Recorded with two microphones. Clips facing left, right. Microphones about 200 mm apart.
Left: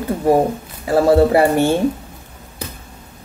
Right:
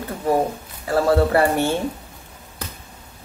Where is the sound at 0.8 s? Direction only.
20° left (ahead or behind).